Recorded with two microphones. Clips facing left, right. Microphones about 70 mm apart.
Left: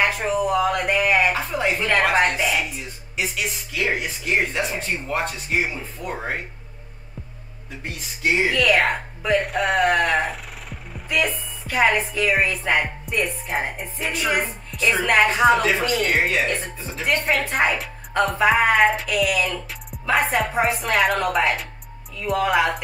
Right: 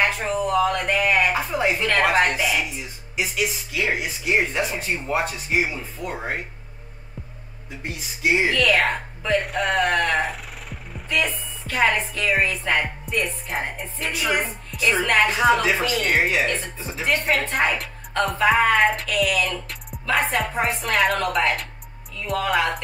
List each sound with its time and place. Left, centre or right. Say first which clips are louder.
0.0 s a sound: left 1 dB; centre
1.9 s speech: left 1 dB; centre
7.8 s speech: even; centre
8.5 s speech: left 1 dB; centre